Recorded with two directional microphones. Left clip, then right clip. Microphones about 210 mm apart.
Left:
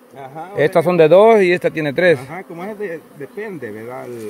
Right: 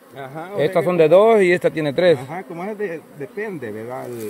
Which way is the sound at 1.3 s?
10° left (ahead or behind).